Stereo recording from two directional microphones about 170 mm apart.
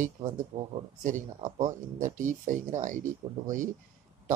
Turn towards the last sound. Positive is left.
turn(degrees=-50)  # may be behind; listen again after turning